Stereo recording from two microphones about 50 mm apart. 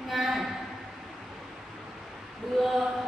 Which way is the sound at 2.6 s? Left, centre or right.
Centre.